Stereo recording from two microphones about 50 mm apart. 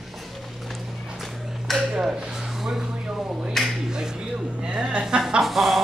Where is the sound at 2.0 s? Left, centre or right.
Centre.